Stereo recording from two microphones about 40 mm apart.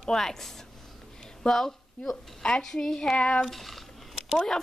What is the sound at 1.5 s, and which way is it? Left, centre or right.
A woman's voice, centre.